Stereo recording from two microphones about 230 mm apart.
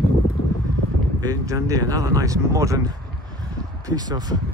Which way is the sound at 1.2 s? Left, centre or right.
Centre.